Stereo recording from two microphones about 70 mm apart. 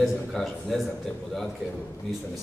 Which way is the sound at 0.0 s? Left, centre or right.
Centre.